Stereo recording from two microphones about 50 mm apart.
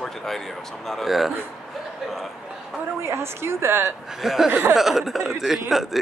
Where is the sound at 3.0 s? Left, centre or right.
Right.